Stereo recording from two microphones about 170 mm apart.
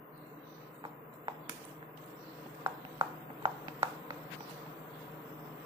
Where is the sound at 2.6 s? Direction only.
30° right (ahead or behind).